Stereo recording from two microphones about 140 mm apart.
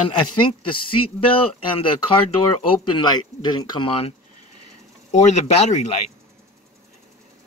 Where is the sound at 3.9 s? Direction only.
45° left (ahead or behind).